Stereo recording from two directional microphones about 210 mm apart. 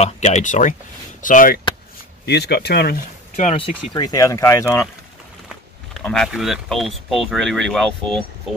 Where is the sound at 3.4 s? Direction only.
30° left (ahead or behind); by 4.9 s 10° left (ahead or behind).